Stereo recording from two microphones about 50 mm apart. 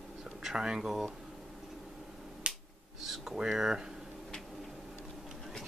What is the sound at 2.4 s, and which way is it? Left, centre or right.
Finger snapping, right.